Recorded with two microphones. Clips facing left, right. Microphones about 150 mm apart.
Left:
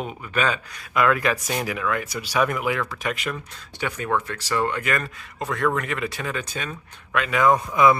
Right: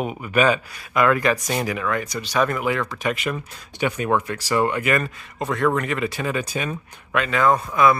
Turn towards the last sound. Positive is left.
turn(degrees=15)  # may be behind; listen again after turning